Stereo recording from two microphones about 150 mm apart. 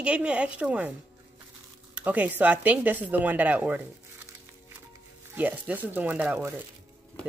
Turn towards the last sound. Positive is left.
turn(degrees=-15)  # may be behind; listen again after turning